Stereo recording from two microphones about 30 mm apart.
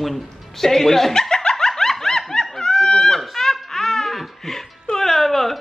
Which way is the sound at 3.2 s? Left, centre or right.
Centre.